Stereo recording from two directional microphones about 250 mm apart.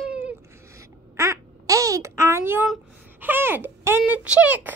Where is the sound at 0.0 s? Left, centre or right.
Centre.